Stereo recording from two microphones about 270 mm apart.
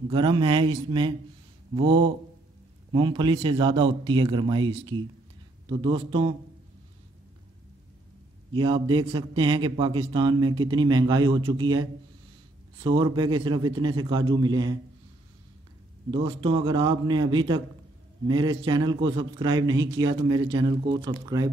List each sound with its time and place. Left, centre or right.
0.1 s a man's voice: centre
8.5 s a man's voice: centre
16.1 s a man's voice: centre